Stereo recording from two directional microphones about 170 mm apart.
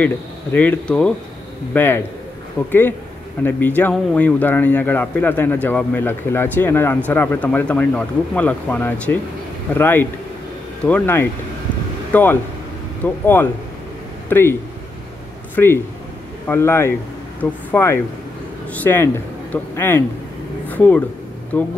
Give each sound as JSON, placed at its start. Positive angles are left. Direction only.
{"t": 0.0, "sound": "speech", "side_deg": 10}
{"t": 3.4, "sound": "speech", "side_deg": 10}
{"t": 20.6, "sound": "a sound", "side_deg": 10}
{"t": 21.5, "sound": "speech", "side_deg": 10}